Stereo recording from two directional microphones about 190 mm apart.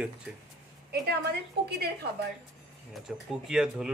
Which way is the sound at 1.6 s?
60° right (ahead or behind).